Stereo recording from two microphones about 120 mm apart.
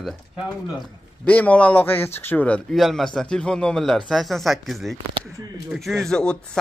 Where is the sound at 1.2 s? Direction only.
10° left (ahead or behind).